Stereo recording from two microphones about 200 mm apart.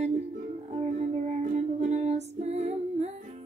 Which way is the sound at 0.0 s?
35° right (ahead or behind).